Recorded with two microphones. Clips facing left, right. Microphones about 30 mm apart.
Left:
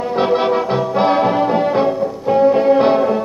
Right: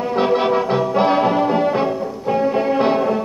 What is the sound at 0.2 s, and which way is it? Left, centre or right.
Music, centre.